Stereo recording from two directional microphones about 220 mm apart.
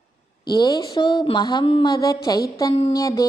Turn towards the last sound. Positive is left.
turn(degrees=15)  # may be behind; listen again after turning